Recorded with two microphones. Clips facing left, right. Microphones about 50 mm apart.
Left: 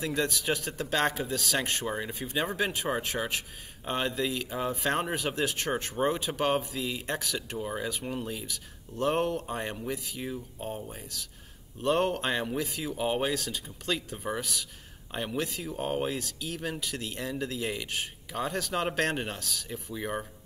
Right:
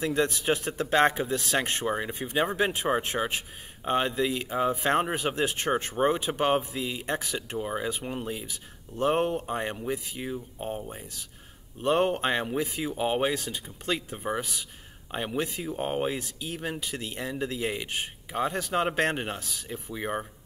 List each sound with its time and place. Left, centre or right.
0.0 s speech: right